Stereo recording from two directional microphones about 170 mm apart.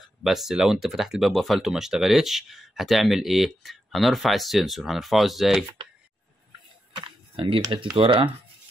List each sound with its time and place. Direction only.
0.0 s speech: centre (ahead or behind)
7.0 s speech: 30° right (ahead or behind)